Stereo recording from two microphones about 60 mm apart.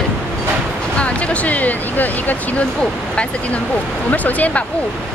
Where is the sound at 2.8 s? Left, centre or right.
Centre.